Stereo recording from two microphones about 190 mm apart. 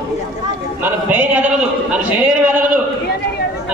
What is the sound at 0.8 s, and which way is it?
A man's voice, 10° right (ahead or behind).